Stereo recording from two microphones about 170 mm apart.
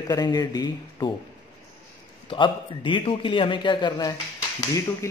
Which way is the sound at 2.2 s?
30° left (ahead or behind).